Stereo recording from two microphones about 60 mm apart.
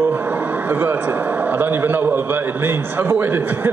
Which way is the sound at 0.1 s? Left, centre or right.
Right.